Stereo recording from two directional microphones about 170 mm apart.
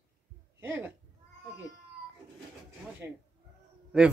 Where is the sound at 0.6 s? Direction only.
15° right (ahead or behind).